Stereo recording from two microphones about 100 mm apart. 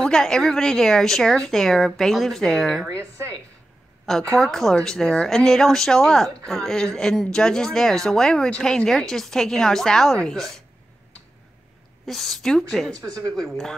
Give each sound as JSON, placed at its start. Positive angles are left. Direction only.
{"t": 0.0, "sound": "speech", "side_deg": 5}
{"t": 4.0, "sound": "a sound", "side_deg": 5}
{"t": 4.4, "sound": "speech", "side_deg": 5}
{"t": 12.1, "sound": "speech", "side_deg": 0}